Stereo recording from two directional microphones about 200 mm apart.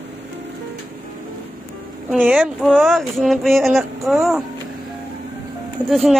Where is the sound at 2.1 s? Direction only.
5° right (ahead or behind).